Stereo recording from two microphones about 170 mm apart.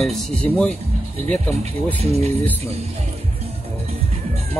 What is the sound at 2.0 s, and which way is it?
Speech, 40° right (ahead or behind).